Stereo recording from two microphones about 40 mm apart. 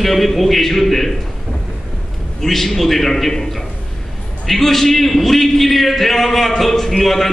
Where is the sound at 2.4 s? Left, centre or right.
Centre.